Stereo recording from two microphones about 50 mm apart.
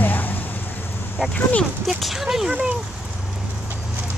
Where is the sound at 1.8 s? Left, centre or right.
Centre.